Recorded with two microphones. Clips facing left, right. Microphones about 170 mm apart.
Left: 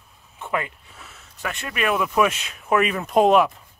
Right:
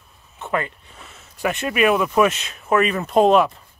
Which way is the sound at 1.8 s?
Centre (ahead or behind).